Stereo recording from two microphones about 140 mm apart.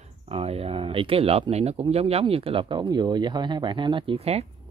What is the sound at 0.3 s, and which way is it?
Speech, 45° right (ahead or behind).